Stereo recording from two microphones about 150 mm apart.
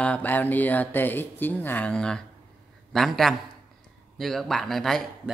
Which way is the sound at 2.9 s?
Centre (ahead or behind).